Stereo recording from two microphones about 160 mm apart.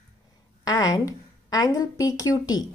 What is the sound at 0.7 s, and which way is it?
A woman's voice, 25° left (ahead or behind).